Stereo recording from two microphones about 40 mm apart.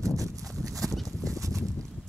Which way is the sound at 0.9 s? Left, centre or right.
Centre.